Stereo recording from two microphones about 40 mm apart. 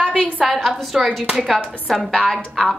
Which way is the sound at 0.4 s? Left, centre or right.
Centre.